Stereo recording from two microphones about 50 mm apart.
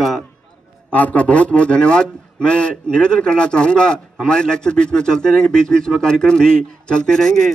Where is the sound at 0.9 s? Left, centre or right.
Left.